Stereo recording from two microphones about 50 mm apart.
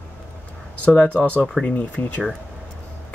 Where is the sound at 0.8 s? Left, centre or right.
Left.